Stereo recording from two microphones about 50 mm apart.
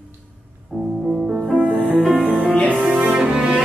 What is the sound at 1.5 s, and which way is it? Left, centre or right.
Music, left.